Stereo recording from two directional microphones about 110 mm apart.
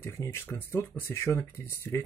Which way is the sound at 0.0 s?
25° left (ahead or behind).